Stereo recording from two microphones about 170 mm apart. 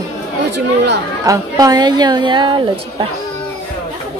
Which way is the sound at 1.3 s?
20° right (ahead or behind).